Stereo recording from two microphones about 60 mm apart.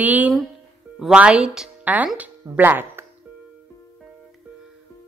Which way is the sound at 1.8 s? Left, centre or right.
Right.